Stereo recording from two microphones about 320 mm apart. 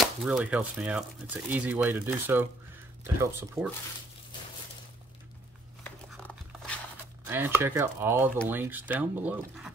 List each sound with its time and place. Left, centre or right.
0.0 s speech: centre
5.9 s a sound: centre
7.2 s speech: centre